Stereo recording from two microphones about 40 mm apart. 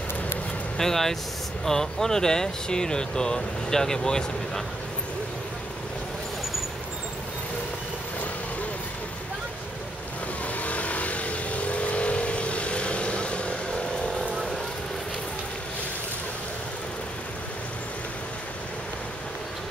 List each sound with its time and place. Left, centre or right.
0.7 s speech: centre
10.4 s vehicle: left